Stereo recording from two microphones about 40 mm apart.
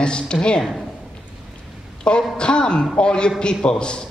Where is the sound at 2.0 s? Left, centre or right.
Left.